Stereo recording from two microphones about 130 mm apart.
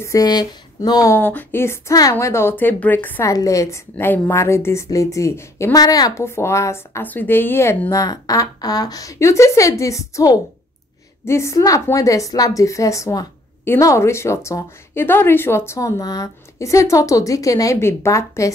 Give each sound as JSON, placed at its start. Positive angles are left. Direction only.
{"t": 0.0, "sound": "speech", "side_deg": 25}
{"t": 1.1, "sound": "speech", "side_deg": 15}
{"t": 3.3, "sound": "a woman's voice", "side_deg": 25}